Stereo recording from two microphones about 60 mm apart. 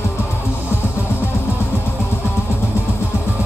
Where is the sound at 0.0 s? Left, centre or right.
Left.